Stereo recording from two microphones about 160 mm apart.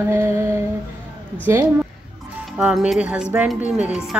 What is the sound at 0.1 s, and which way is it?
Speech, 15° right (ahead or behind).